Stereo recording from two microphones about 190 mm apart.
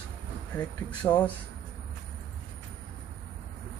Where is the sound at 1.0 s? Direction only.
15° left (ahead or behind).